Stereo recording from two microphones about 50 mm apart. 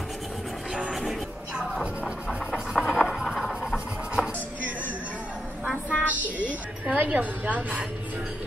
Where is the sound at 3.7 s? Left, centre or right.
Centre.